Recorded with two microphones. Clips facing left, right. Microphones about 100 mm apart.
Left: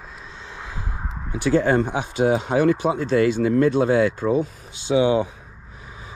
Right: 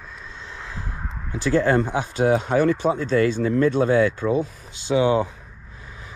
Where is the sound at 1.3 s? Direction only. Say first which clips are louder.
Left 1 dB; 25° left (ahead or behind).